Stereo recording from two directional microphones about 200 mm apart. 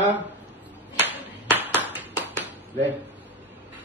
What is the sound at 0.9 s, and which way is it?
Clapping, 10° right (ahead or behind).